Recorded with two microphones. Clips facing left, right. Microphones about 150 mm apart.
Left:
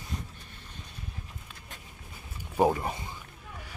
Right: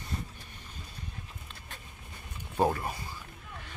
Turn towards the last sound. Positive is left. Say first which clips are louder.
# left 3 dB
turn(degrees=20)  # may be behind; listen again after turning